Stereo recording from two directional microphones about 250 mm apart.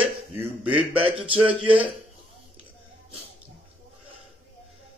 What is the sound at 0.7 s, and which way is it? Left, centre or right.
Speech, right.